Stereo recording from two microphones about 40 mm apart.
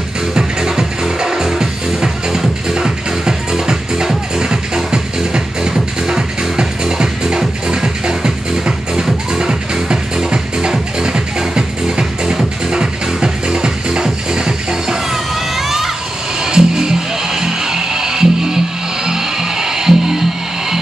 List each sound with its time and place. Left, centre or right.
0.3 s music: centre
15.5 s a sound: centre
16.4 s music: centre